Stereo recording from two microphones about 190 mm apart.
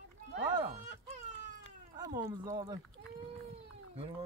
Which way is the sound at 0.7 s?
40° right (ahead or behind).